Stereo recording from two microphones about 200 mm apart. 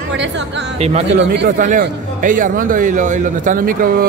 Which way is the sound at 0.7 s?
30° right (ahead or behind).